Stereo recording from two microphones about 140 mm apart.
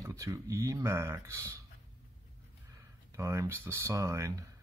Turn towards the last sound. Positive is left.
turn(degrees=-25)  # may be behind; listen again after turning